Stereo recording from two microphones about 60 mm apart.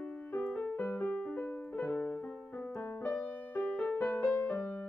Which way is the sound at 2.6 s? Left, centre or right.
Left.